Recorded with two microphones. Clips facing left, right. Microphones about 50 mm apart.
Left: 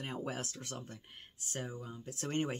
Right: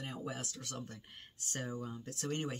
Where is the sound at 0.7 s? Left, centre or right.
Centre.